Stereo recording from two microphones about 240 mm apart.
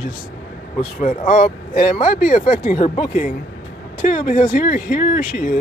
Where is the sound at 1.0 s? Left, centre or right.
Left.